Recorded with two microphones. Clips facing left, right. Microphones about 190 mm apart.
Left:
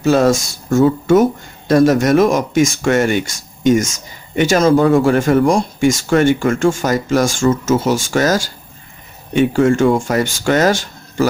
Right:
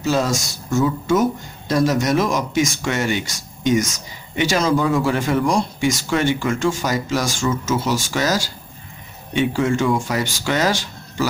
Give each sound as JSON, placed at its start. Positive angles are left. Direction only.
{"t": 0.0, "sound": "speech", "side_deg": 55}